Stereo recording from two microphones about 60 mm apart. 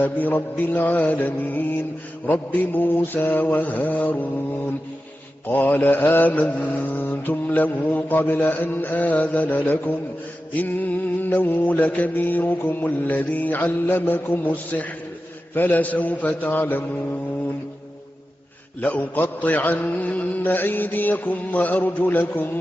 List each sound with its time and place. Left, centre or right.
0.0 s mantra: left
5.5 s mantra: left
18.8 s mantra: left